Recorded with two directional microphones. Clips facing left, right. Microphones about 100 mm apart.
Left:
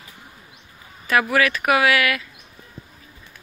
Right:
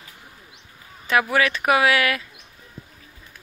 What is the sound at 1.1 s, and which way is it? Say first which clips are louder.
Speech: left 1 dB; 25° right (ahead or behind).